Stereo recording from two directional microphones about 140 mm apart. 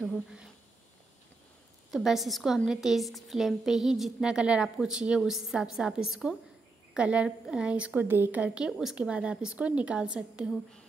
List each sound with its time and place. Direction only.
0.0 s speech: centre (ahead or behind)
1.9 s a woman's voice: centre (ahead or behind)